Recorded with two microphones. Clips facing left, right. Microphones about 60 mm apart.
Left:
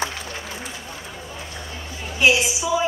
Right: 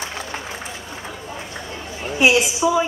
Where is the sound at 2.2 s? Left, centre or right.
Centre.